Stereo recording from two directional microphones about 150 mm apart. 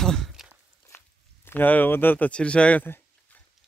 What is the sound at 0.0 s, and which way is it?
Walk, centre (ahead or behind).